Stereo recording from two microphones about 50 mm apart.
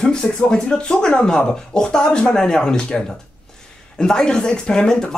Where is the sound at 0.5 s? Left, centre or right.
Centre.